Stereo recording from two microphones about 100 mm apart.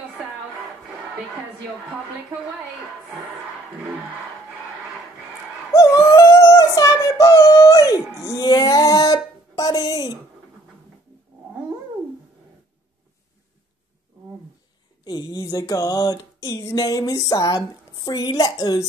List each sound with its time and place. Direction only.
5.7 s female singing: 35° left (ahead or behind)
8.2 s speech: 35° left (ahead or behind)
15.0 s music: 40° left (ahead or behind)